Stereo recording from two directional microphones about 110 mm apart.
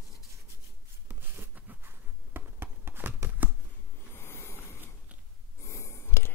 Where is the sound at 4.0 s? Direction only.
20° left (ahead or behind).